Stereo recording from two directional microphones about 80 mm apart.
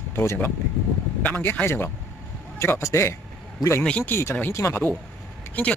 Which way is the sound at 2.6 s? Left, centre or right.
Left.